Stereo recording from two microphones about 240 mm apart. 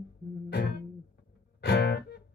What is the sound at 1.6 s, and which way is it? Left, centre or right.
Music, left.